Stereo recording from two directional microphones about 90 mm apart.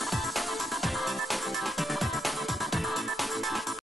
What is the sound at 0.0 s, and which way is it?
Music, centre (ahead or behind).